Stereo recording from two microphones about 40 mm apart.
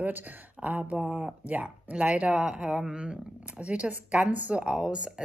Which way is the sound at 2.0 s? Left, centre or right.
Centre.